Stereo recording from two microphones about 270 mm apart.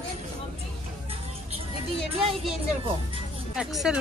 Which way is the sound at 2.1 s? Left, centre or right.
Right.